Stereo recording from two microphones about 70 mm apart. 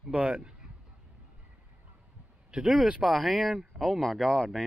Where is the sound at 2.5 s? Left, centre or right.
Centre.